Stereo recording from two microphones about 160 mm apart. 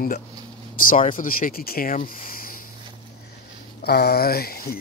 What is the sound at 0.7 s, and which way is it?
Speech, 60° left (ahead or behind).